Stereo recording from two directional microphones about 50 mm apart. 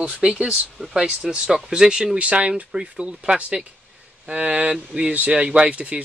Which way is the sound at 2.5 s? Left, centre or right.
Centre.